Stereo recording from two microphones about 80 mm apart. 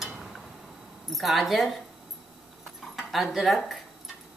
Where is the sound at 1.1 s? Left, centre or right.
Centre.